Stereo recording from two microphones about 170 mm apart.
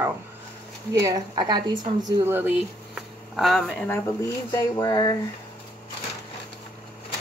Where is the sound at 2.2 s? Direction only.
10° right (ahead or behind).